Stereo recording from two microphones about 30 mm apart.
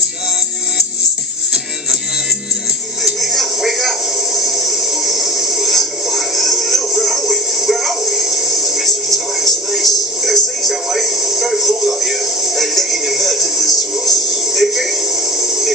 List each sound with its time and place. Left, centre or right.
3.0 s music: centre
4.4 s a sound: centre
5.7 s music: centre